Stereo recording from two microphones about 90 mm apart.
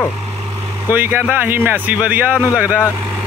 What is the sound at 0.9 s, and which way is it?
Speech, 20° right (ahead or behind).